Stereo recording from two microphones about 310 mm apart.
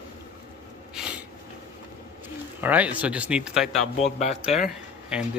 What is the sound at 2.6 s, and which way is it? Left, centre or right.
Speech, centre.